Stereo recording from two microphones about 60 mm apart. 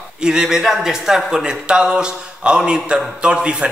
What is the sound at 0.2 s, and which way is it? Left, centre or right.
Speech, centre.